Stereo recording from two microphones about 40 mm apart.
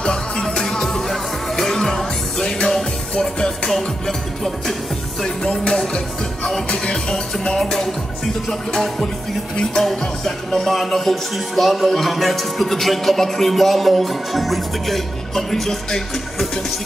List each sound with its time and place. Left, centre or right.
0.0 s music: centre
5.2 s music: centre
7.5 s music: centre
10.2 s music: centre